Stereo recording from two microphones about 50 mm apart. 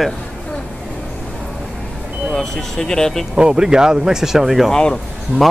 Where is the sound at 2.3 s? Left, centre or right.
Centre.